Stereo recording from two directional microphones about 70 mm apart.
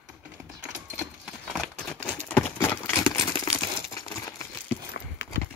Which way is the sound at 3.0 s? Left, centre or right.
Left.